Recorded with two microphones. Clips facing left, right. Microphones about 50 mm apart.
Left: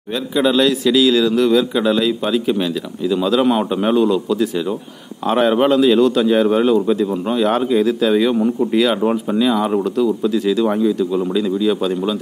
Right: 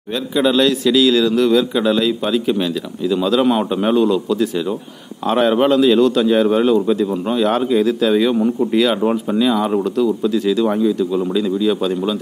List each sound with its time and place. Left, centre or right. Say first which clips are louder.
0.1 s speech: even; centre